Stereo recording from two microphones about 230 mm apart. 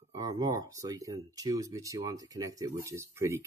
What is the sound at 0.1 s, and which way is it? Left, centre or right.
Speech, centre.